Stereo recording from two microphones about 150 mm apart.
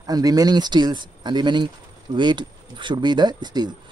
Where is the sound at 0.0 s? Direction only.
25° right (ahead or behind).